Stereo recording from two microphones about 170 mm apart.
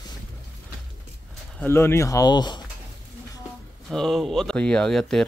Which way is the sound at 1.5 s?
15° left (ahead or behind).